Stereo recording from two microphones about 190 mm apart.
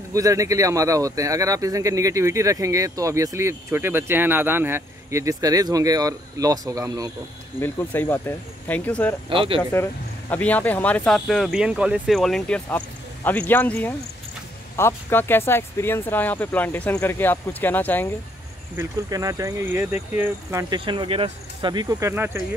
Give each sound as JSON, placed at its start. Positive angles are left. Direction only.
{"t": 0.1, "sound": "speech", "side_deg": -15}
{"t": 7.6, "sound": "speech", "side_deg": 10}
{"t": 9.3, "sound": "speech", "side_deg": -25}
{"t": 9.6, "sound": "speech", "side_deg": 10}
{"t": 18.8, "sound": "speech", "side_deg": -20}
{"t": 20.7, "sound": "speech", "side_deg": -25}